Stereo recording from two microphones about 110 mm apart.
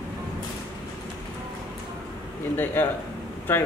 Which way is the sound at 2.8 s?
20° left (ahead or behind).